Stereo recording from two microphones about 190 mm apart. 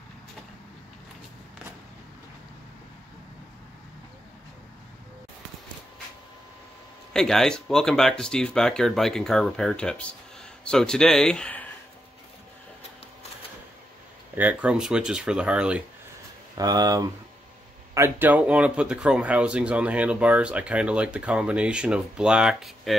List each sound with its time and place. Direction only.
7.2 s speech: 5° left (ahead or behind)
14.3 s speech: 10° right (ahead or behind)
16.5 s speech: 20° right (ahead or behind); by 22.9 s centre (ahead or behind)